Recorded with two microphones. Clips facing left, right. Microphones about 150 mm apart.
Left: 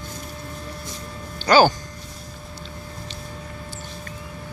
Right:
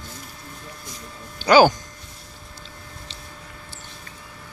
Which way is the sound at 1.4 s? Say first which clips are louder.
Right 1 dB; 15° right (ahead or behind).